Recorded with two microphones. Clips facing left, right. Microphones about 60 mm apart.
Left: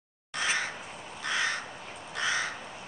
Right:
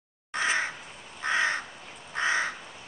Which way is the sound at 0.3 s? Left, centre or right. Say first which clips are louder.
Right 3 dB; right.